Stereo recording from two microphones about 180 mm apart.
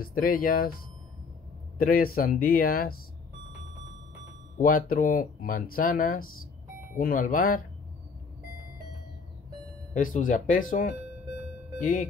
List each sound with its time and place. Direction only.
0.0 s speech: 50° left (ahead or behind)
1.8 s speech: 55° left (ahead or behind)
4.6 s speech: 50° left (ahead or behind)
9.9 s speech: 45° left (ahead or behind)